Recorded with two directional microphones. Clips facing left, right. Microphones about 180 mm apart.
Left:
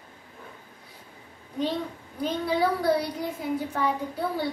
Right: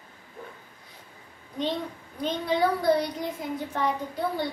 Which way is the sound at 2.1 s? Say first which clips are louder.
Even; 5° left (ahead or behind).